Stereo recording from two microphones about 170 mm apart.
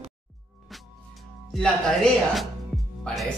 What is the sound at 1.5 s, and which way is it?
Music, 5° left (ahead or behind).